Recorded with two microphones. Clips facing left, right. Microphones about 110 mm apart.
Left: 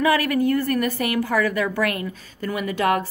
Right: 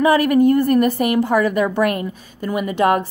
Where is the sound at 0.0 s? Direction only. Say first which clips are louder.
Right 6 dB; 25° right (ahead or behind).